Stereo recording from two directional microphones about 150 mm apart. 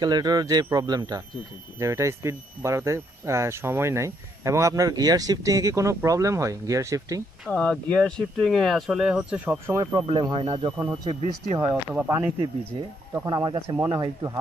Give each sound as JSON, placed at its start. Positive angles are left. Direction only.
{"t": 0.0, "sound": "speech", "side_deg": -25}
{"t": 7.4, "sound": "speech", "side_deg": 5}
{"t": 10.0, "sound": "speech", "side_deg": -30}
{"t": 11.6, "sound": "speech", "side_deg": -10}
{"t": 12.7, "sound": "speech", "side_deg": -35}
{"t": 13.1, "sound": "speech", "side_deg": -25}